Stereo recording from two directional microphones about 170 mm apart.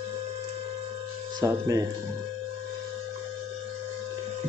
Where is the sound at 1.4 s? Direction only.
20° right (ahead or behind).